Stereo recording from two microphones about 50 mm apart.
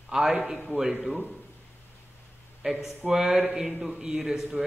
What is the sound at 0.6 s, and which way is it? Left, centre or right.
Speech, centre.